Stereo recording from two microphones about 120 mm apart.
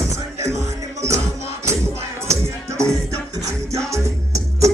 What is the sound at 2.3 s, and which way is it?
Music, 25° right (ahead or behind).